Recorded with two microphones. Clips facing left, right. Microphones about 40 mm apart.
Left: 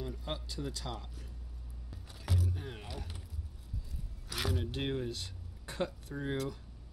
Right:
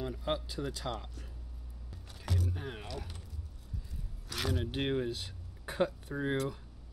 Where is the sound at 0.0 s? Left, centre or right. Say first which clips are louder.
Right 5 dB; centre.